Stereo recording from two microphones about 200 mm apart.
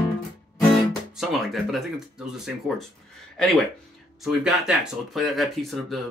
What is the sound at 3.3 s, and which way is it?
Speech, 5° left (ahead or behind).